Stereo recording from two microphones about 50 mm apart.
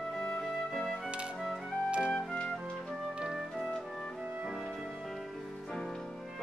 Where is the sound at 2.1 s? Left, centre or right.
Left.